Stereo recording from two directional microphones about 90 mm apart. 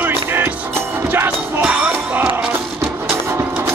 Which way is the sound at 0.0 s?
25° right (ahead or behind).